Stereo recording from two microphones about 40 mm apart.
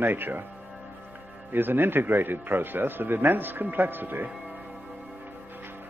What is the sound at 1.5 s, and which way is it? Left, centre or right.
A man's voice, right.